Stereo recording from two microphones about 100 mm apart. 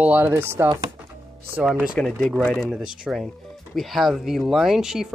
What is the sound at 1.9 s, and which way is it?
Speech, 10° left (ahead or behind).